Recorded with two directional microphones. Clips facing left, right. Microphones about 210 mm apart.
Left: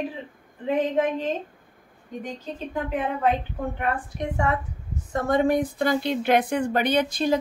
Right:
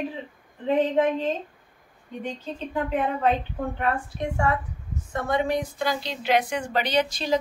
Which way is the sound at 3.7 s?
20° left (ahead or behind).